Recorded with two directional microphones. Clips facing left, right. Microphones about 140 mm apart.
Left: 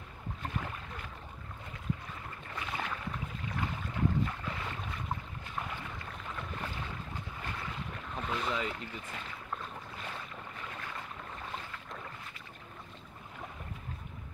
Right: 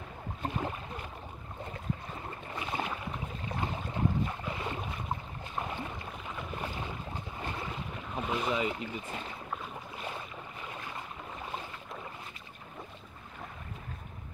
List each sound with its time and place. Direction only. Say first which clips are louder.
0.4 s boat: right 5 dB; 25° right (ahead or behind)
2.5 s boat: right 3 dB; 20° right (ahead or behind)
7.9 s boat: right 3 dB; 10° right (ahead or behind)